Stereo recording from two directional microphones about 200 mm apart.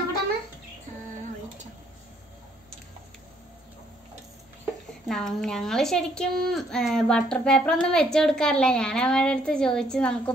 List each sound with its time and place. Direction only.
5.0 s a woman's voice: centre (ahead or behind)